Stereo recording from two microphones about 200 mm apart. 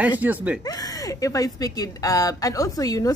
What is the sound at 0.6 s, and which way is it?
Speech, 20° left (ahead or behind).